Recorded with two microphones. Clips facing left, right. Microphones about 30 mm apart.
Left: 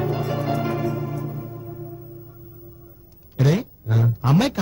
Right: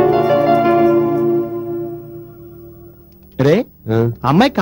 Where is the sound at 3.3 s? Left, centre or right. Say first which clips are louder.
Right 8 dB; right.